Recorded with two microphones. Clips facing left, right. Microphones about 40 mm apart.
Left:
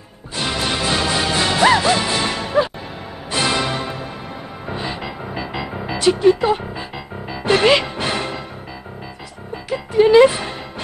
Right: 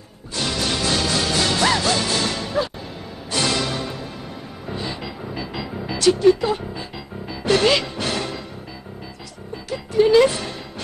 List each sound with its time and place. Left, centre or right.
0.4 s music: left
9.7 s music: left